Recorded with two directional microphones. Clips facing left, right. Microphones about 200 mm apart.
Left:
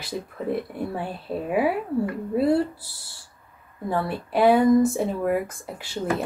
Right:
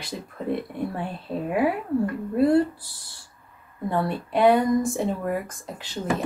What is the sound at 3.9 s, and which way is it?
Speech, 5° left (ahead or behind).